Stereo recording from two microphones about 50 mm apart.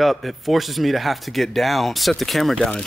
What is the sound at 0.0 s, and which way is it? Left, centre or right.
A man's voice, centre.